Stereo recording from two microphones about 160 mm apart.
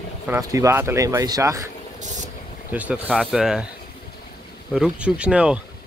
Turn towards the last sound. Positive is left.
turn(degrees=-5)  # may be behind; listen again after turning